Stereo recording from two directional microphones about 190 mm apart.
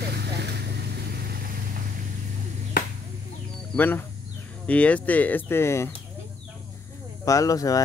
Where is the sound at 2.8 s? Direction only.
55° left (ahead or behind).